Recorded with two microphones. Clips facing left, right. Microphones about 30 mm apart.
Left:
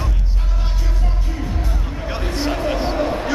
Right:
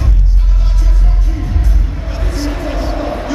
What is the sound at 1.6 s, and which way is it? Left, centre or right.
Music, centre.